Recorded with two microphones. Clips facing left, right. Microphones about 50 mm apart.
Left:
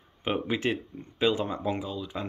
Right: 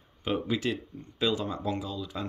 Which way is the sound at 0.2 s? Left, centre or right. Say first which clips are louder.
Left 1 dB; left.